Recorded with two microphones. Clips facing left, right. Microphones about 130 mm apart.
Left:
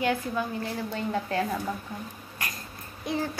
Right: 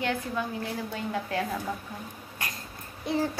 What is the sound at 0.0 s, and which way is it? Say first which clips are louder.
Speech: left 2 dB; 5° left (ahead or behind).